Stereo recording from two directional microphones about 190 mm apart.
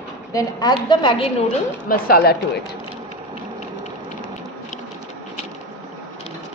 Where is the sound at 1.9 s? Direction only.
55° left (ahead or behind).